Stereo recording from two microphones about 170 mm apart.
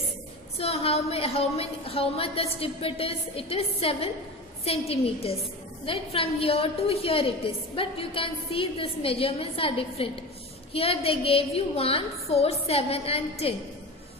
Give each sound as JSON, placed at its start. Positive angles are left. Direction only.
{"t": 0.6, "sound": "a woman's voice", "side_deg": 35}